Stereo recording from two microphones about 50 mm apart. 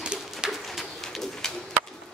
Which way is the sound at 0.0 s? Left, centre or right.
Centre.